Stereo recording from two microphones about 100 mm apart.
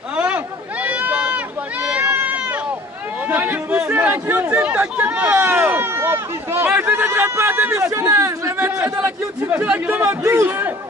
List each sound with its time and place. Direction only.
0.1 s a sound: 15° right (ahead or behind)
0.8 s run: 15° right (ahead or behind)
3.3 s speech: 20° right (ahead or behind)
10.0 s speech: 30° right (ahead or behind)